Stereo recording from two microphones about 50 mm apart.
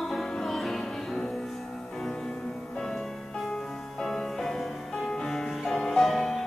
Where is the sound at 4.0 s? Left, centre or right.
Centre.